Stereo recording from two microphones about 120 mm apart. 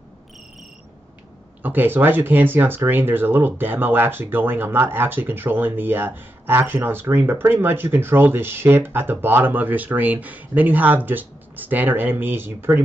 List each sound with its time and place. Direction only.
1.6 s speech: 15° right (ahead or behind)